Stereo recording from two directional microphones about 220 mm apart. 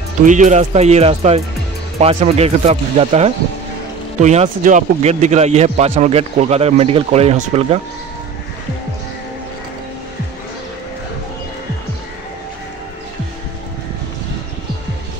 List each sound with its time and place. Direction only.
0.2 s speech: 35° right (ahead or behind)